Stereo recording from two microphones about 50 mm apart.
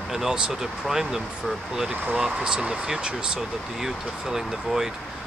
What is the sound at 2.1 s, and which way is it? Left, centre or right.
Speech, centre.